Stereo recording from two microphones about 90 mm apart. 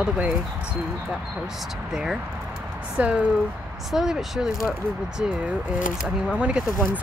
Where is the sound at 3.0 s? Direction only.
15° right (ahead or behind).